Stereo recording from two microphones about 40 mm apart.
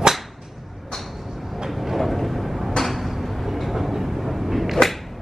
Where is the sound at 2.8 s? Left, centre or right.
Centre.